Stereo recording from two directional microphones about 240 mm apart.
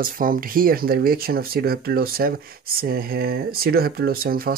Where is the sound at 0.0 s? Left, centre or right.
Right.